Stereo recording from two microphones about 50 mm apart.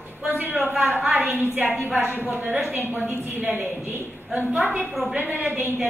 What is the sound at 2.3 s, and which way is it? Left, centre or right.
Speech, right.